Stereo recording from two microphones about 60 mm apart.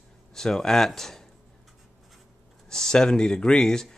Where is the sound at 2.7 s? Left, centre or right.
Centre.